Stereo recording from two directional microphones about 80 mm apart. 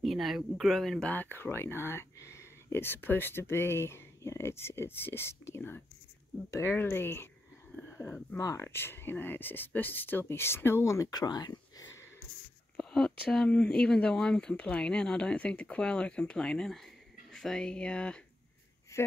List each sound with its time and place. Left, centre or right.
0.0 s speech: centre
1.0 s speech: left
8.4 s speech: left
8.6 s speech: left
12.7 s a sound: centre
13.7 s speech: centre
18.9 s a sound: left